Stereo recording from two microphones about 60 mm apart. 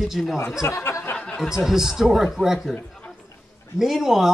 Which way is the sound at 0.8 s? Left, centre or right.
Left.